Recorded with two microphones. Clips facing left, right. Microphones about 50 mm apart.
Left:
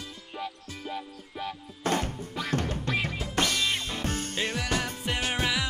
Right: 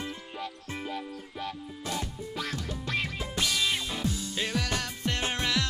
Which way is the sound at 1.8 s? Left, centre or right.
Left.